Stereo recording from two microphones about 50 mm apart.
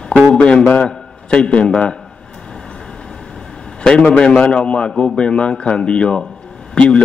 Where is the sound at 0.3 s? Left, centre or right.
Left.